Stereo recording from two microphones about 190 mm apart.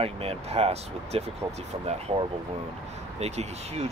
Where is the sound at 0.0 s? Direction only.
30° right (ahead or behind).